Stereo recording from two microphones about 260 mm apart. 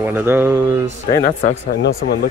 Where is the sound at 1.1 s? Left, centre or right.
Left.